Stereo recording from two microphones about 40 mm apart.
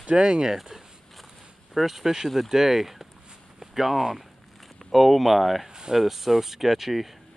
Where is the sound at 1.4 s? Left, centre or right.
Centre.